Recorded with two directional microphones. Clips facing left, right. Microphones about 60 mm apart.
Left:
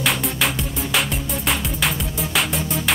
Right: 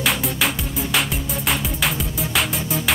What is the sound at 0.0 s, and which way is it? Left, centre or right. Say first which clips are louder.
Music: even; centre.